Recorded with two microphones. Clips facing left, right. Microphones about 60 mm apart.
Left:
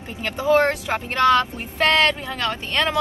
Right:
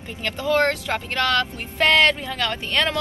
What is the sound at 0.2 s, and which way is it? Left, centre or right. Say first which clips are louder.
Speech: left 2 dB; centre.